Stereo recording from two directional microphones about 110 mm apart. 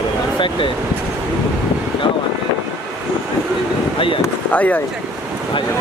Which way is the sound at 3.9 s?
50° left (ahead or behind).